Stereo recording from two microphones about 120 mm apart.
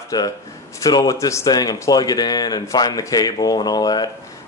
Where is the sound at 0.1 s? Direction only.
30° left (ahead or behind).